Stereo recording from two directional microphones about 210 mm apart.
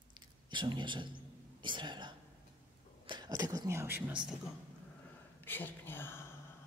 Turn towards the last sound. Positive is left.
turn(degrees=10)  # may be behind; listen again after turning